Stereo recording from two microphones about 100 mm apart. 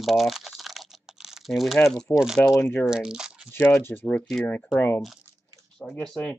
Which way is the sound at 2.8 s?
5° right (ahead or behind).